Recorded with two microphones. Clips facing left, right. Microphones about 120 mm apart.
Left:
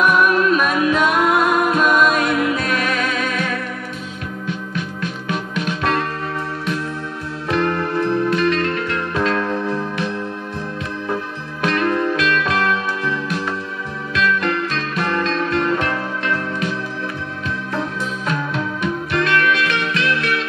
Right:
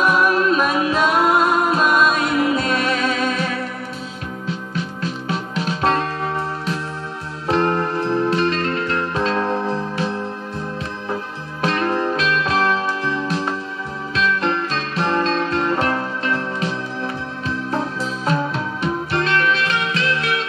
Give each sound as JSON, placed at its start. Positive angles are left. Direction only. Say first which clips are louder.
{"t": 0.0, "sound": "music", "louder": "left 1 dB", "side_deg": -30}
{"t": 7.4, "sound": "music", "louder": "right 1 dB", "side_deg": -30}
{"t": 11.6, "sound": "music", "louder": "left 1 dB", "side_deg": -30}
{"t": 18.2, "sound": "music", "louder": "right 2 dB", "side_deg": -35}